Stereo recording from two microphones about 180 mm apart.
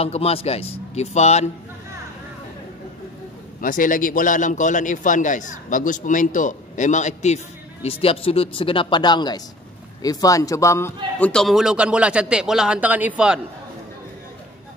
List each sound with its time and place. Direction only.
0.0 s speech: 35° left (ahead or behind)
3.6 s a man's voice: 50° left (ahead or behind); by 13.4 s 5° right (ahead or behind)